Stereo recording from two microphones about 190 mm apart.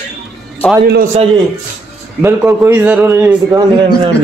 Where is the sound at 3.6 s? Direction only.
25° right (ahead or behind).